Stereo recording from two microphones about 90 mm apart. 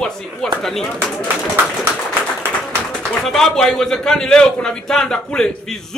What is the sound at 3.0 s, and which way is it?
A man's voice, 5° left (ahead or behind).